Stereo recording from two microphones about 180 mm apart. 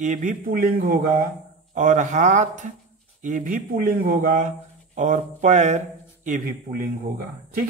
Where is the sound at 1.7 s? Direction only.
45° right (ahead or behind).